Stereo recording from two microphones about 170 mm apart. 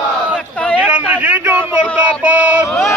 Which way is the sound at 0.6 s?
5° left (ahead or behind).